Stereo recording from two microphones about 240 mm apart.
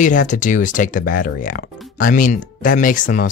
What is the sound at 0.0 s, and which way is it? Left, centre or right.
Speech, left.